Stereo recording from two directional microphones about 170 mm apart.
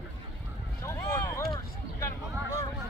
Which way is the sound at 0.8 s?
15° left (ahead or behind).